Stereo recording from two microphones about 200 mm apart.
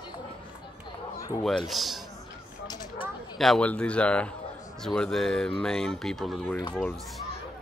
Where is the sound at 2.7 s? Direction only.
20° left (ahead or behind).